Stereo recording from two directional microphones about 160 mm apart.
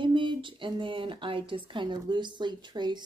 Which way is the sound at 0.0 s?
30° right (ahead or behind).